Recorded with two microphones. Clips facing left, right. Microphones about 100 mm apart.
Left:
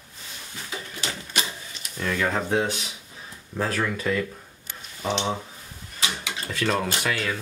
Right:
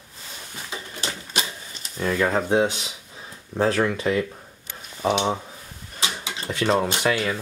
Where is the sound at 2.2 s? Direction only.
15° right (ahead or behind).